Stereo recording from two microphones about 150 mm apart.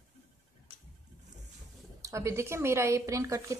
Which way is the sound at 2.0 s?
20° right (ahead or behind).